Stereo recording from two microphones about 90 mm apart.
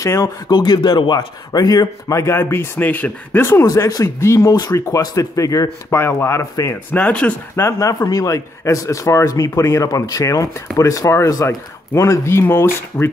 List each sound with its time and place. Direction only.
0.0 s a man's voice: 35° left (ahead or behind)
0.5 s a man's voice: 55° left (ahead or behind); by 3.6 s 25° left (ahead or behind)
3.6 s a man's voice: 40° left (ahead or behind)
7.0 s speech: 15° left (ahead or behind)
7.5 s a man's voice: 30° left (ahead or behind)
7.9 s a man's voice: 40° left (ahead or behind)